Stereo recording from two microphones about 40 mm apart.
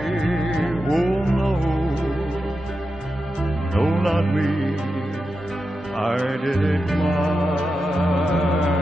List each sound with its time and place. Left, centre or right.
0.0 s music: centre
0.9 s music: centre
3.7 s music: centre
6.5 s music: centre